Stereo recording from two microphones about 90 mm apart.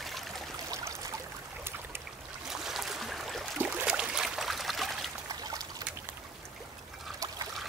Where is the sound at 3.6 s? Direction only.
25° right (ahead or behind).